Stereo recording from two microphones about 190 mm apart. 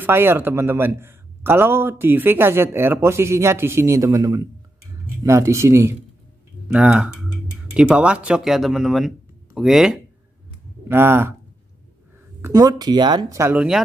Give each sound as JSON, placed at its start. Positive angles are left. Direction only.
{"t": 0.0, "sound": "a man's voice", "side_deg": -10}
{"t": 12.4, "sound": "a man's voice", "side_deg": -15}